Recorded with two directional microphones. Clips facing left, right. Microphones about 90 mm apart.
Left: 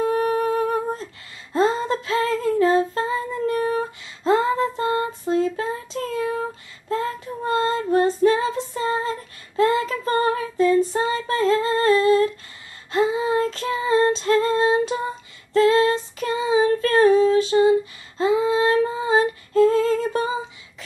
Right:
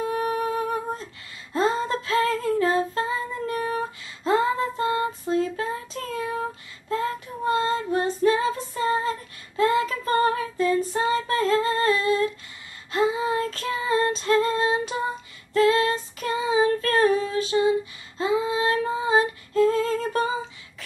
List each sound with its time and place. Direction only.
0.0 s music: 35° left (ahead or behind)
1.5 s humming: 30° left (ahead or behind)
7.4 s female singing: 40° left (ahead or behind)
9.6 s child singing: 30° left (ahead or behind)
11.2 s humming: 30° left (ahead or behind)
12.9 s female singing: 30° left (ahead or behind)